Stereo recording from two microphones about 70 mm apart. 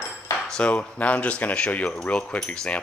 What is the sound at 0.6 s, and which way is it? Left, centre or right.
Speech, centre.